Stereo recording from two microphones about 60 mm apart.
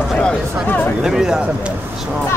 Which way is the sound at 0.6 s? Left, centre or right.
Left.